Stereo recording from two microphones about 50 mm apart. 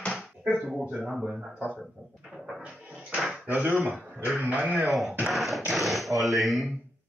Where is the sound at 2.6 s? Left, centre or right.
Centre.